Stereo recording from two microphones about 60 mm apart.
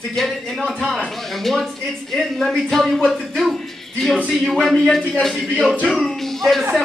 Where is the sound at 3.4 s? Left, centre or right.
Centre.